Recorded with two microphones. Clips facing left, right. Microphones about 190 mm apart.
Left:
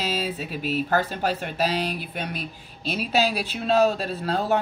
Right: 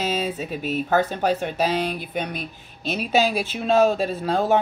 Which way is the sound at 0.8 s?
10° left (ahead or behind).